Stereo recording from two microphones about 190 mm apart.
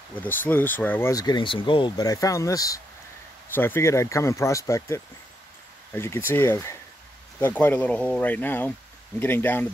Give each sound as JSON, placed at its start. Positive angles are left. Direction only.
{"t": 0.1, "sound": "speech", "side_deg": 10}